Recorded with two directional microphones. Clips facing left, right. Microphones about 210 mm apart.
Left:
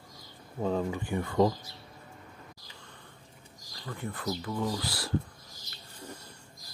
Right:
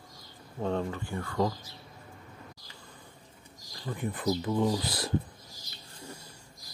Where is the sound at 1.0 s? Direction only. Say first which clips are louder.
Left 4 dB; 20° left (ahead or behind).